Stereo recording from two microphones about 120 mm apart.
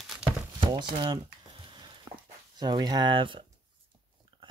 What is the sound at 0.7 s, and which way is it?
Speech, 40° right (ahead or behind).